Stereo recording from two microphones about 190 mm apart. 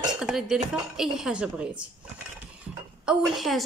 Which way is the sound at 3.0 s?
5° right (ahead or behind).